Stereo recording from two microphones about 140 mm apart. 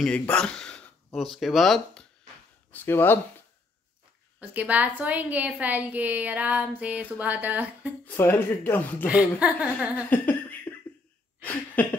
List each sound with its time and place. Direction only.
0.0 s speech: 5° left (ahead or behind)
2.7 s speech: 15° left (ahead or behind)
4.4 s a woman's voice: 10° right (ahead or behind)
8.0 s speech: 15° left (ahead or behind)
9.0 s a woman's voice: 10° right (ahead or behind)
10.0 s a sound: 10° left (ahead or behind)